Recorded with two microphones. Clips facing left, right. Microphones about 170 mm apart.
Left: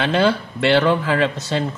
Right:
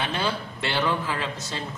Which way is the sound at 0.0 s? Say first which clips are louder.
Left 10 dB; 85° left.